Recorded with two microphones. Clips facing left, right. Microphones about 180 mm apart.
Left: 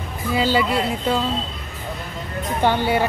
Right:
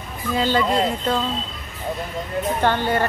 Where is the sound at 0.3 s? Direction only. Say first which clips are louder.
Left 1 dB; 10° left (ahead or behind).